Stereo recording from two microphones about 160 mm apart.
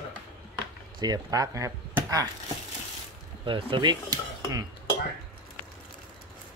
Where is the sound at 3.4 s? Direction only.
30° right (ahead or behind).